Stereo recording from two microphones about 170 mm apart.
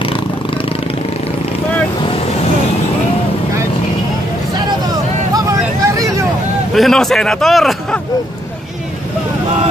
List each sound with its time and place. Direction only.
5.3 s vehicle: 20° right (ahead or behind)
6.7 s a man's voice: centre (ahead or behind)